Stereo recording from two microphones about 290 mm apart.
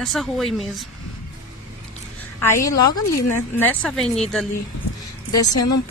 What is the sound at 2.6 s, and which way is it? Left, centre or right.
Speech, left.